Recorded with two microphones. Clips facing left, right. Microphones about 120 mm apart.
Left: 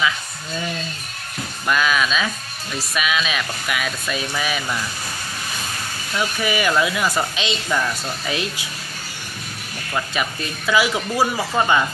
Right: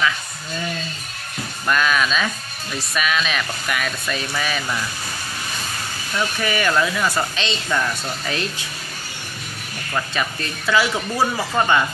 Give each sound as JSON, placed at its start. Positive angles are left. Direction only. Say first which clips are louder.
{"t": 1.7, "sound": "speech", "louder": "even", "side_deg": 5}
{"t": 6.1, "sound": "speech", "louder": "left 1 dB", "side_deg": 10}
{"t": 9.9, "sound": "speech", "louder": "even", "side_deg": 10}